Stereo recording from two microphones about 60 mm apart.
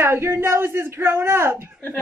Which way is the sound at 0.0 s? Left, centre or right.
Right.